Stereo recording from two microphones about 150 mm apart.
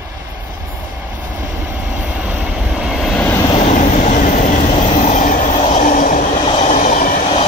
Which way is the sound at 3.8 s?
60° left (ahead or behind).